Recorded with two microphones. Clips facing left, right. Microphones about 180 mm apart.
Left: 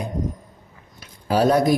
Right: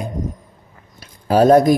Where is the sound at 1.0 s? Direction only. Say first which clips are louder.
Right 5 dB; 45° right (ahead or behind).